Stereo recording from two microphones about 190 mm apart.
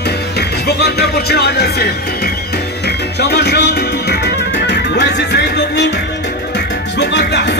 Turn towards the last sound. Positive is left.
turn(degrees=65)  # may be behind; listen again after turning